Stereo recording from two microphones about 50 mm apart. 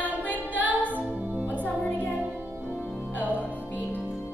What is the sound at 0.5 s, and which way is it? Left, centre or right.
Music, right.